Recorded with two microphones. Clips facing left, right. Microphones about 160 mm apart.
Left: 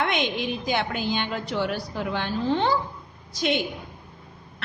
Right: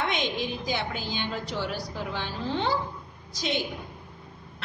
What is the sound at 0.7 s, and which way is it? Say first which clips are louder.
A woman's voice: left 5 dB; 60° left (ahead or behind).